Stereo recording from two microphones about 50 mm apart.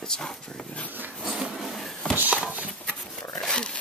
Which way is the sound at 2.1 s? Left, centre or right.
Right.